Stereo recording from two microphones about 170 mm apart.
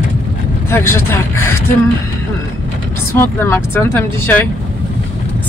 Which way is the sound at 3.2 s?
15° left (ahead or behind).